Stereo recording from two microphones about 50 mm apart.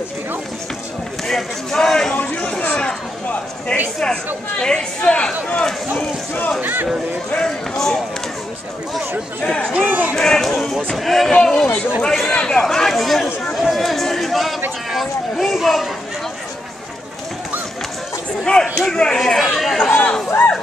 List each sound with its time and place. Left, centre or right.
1.2 s speech: centre
2.7 s a sound: centre
3.7 s speech: centre
6.6 s speech: right
7.7 s speech: centre
9.4 s speech: centre
9.7 s speech: right
10.1 s speech: centre
11.4 s speech: centre
12.3 s speech: centre
18.4 s speech: centre
19.1 s speech: centre
20.2 s speech: left